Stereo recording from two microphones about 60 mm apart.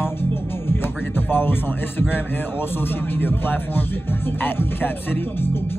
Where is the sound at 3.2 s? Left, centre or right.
Left.